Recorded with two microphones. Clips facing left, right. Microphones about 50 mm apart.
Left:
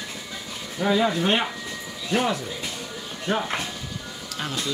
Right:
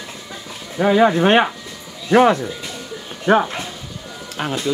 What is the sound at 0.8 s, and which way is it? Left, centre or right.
Speech, right.